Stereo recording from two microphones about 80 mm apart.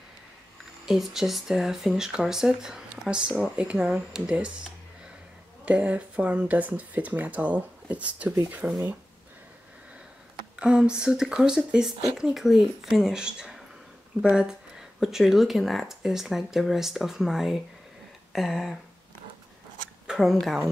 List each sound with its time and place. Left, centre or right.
0.8 s speech: centre
10.5 s speech: centre
20.1 s speech: centre